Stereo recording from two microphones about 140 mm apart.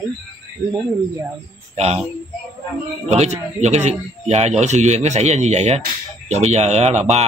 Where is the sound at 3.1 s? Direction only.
50° right (ahead or behind).